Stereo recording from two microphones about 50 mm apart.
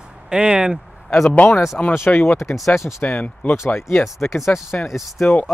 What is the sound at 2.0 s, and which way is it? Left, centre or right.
Speech, left.